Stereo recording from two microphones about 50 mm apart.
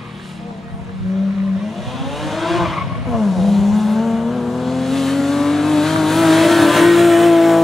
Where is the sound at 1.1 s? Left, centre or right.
Centre.